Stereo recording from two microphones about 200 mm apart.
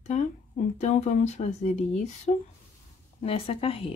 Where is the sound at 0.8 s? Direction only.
35° left (ahead or behind).